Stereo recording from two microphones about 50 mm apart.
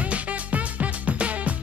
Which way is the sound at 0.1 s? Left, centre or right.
Right.